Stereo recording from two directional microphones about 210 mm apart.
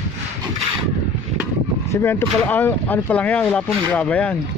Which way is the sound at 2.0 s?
10° left (ahead or behind).